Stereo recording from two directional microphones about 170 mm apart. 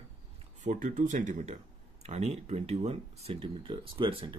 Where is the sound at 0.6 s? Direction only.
50° right (ahead or behind).